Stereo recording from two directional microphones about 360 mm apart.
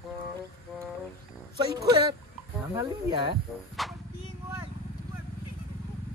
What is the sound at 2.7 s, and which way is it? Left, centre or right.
Speech, centre.